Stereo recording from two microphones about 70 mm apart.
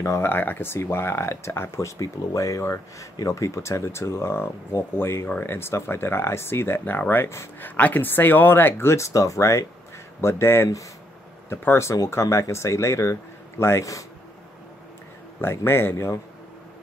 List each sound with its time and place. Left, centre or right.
0.0 s speech: left
0.3 s speech: left
15.4 s speech: left